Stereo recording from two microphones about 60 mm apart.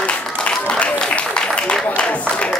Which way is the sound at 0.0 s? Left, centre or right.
Centre.